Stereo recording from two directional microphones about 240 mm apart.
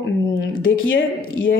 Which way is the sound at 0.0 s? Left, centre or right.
Left.